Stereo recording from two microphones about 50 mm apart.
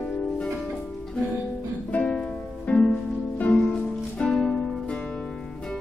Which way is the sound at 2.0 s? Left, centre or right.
Centre.